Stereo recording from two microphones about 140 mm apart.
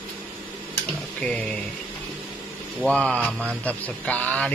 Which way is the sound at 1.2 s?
10° left (ahead or behind).